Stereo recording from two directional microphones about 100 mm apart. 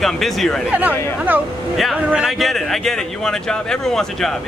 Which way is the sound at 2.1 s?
Centre (ahead or behind).